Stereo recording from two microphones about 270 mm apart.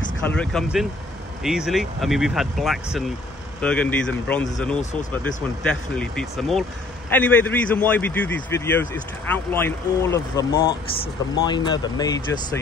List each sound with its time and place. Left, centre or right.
0.3 s a man's voice: centre